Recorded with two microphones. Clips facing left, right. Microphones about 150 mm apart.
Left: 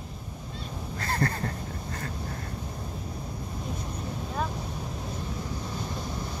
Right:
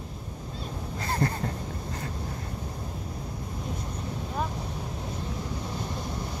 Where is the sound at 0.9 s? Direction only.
15° right (ahead or behind).